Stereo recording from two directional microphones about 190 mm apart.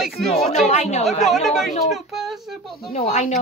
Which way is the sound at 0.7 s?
35° left (ahead or behind).